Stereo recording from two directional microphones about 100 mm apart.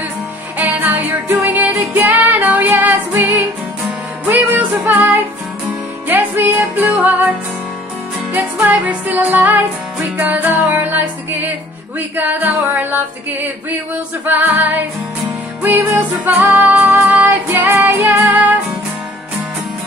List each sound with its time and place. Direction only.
0.6 s music: 15° right (ahead or behind)
12.2 s music: 15° right (ahead or behind)